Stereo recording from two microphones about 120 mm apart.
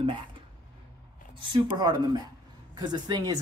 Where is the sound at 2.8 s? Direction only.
35° right (ahead or behind).